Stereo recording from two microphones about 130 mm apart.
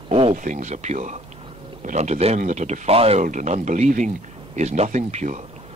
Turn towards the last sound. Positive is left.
turn(degrees=-65)  # may be behind; listen again after turning